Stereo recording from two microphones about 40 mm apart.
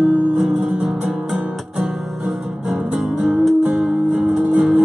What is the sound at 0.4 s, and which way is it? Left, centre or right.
Music, centre.